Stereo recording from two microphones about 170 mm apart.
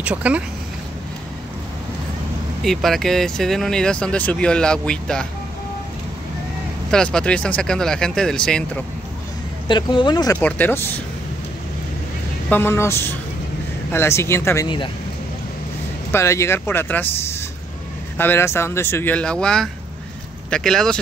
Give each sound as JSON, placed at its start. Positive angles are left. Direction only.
{"t": 0.0, "sound": "speech", "side_deg": -10}
{"t": 2.6, "sound": "speech", "side_deg": 0}
{"t": 6.9, "sound": "speech", "side_deg": 5}
{"t": 9.7, "sound": "speech", "side_deg": 25}
{"t": 10.3, "sound": "speech", "side_deg": 10}
{"t": 12.4, "sound": "speech", "side_deg": 15}
{"t": 16.1, "sound": "speech", "side_deg": 15}
{"t": 18.1, "sound": "speech", "side_deg": 10}